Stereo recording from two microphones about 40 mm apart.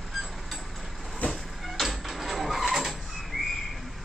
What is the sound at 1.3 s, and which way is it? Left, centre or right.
Vehicle, centre.